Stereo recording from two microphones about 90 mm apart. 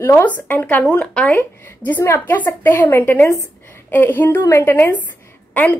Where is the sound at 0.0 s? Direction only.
20° left (ahead or behind).